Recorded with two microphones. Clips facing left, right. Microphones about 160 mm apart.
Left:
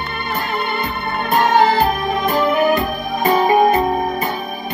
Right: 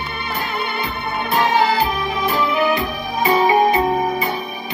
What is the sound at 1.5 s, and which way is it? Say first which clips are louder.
Music: left 3 dB; 45° left (ahead or behind).